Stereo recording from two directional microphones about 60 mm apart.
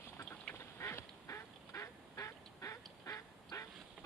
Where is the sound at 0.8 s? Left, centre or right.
Left.